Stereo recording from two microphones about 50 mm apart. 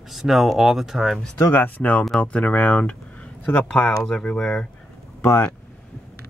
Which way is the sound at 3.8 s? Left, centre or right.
Centre.